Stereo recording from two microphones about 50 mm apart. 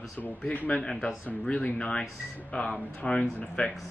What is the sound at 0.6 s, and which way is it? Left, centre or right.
Speech, left.